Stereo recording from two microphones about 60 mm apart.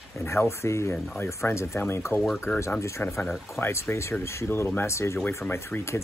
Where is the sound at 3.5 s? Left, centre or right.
Left.